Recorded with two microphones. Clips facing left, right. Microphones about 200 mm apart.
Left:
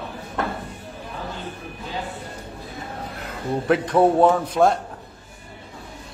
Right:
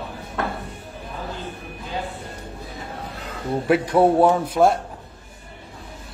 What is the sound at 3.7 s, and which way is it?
A man's voice, 10° right (ahead or behind).